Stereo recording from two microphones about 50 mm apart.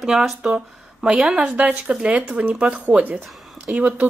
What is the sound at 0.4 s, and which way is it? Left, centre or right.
A woman's voice, centre.